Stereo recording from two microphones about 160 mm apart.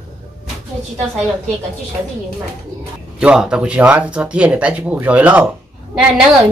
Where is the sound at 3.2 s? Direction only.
5° right (ahead or behind).